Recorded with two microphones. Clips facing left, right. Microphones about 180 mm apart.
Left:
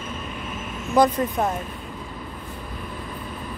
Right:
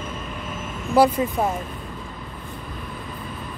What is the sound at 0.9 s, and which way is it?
Speech, 10° right (ahead or behind).